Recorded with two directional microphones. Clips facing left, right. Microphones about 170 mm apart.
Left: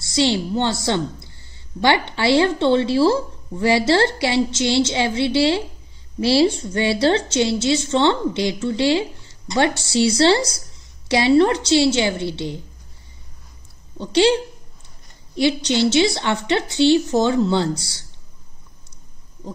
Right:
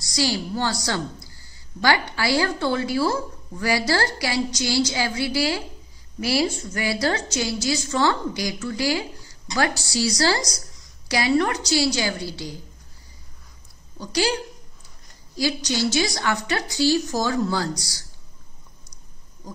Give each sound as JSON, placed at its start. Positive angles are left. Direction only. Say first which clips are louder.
{"t": 0.0, "sound": "a woman's voice", "louder": "left 5 dB", "side_deg": 25}
{"t": 13.9, "sound": "a woman's voice", "louder": "left 8 dB", "side_deg": 25}